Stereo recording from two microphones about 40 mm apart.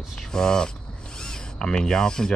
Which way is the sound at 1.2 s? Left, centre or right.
Centre.